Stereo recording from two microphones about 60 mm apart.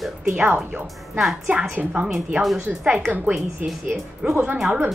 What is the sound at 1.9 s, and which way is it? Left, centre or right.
Speech, centre.